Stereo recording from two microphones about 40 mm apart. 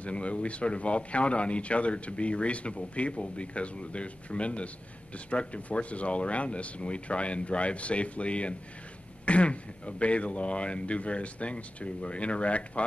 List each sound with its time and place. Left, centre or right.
0.0 s a man's voice: left